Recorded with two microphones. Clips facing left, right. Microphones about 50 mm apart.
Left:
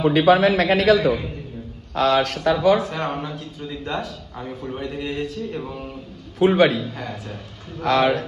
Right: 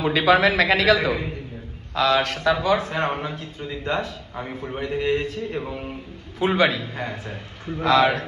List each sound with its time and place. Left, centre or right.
0.0 s a man's voice: right